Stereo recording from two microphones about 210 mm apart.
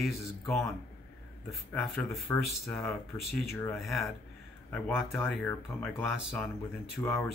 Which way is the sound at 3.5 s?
15° left (ahead or behind).